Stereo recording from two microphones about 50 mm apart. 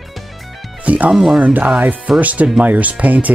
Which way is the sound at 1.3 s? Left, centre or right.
Right.